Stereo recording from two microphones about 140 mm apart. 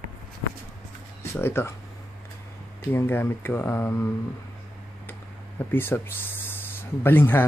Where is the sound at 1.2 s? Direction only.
20° left (ahead or behind).